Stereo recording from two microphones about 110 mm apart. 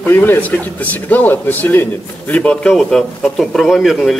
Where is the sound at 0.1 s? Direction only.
20° left (ahead or behind).